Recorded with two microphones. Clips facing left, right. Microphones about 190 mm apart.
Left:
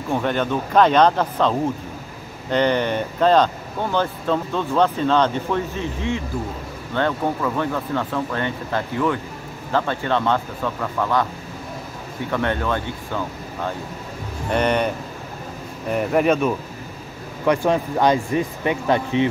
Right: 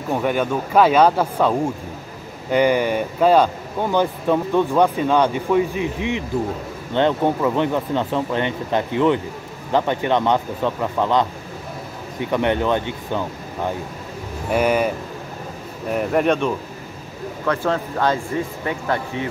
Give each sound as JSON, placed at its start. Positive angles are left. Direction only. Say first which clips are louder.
{"t": 0.1, "sound": "speech", "louder": "right 1 dB", "side_deg": -10}
{"t": 14.5, "sound": "speech", "louder": "right 2 dB", "side_deg": -5}
{"t": 15.9, "sound": "speech", "louder": "even", "side_deg": 0}
{"t": 17.5, "sound": "speech", "louder": "left 3 dB", "side_deg": 15}